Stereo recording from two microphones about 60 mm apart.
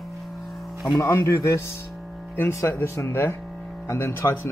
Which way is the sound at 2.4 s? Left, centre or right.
Left.